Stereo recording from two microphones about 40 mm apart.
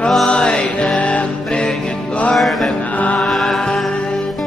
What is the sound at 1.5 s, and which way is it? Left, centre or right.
Music, left.